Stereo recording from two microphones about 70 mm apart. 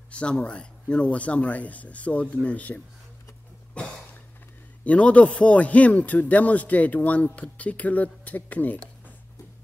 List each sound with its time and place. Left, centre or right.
0.1 s a man's voice: centre
3.8 s cough: centre
4.8 s a man's voice: centre